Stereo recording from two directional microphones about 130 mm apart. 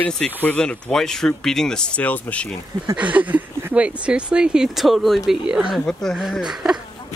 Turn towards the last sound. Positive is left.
turn(degrees=0)  # may be behind; listen again after turning